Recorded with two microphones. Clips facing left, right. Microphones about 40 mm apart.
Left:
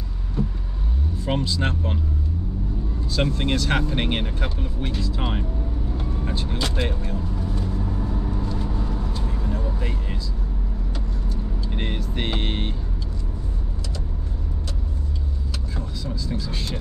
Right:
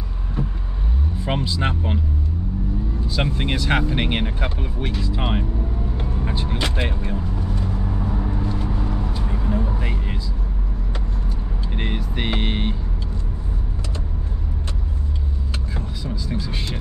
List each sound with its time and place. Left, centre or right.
0.4 s vehicle: right
1.2 s speech: centre
3.1 s speech: centre
5.9 s vehicle: centre
11.7 s speech: centre
15.7 s speech: centre